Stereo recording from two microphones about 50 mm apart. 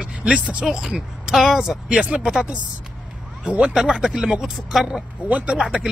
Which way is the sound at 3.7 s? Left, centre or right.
Centre.